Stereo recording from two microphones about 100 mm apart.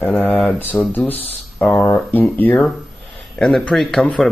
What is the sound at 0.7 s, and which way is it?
Speech, 30° left (ahead or behind).